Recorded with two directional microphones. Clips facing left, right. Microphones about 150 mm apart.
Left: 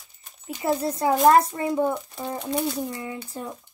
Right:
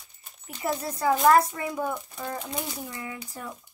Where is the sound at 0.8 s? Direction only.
25° left (ahead or behind).